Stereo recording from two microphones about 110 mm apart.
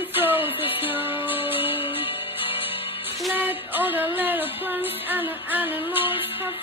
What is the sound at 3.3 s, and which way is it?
Music, 15° right (ahead or behind).